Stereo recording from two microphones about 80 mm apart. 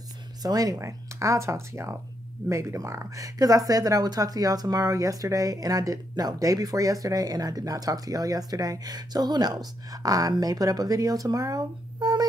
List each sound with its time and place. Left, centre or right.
0.4 s speech: right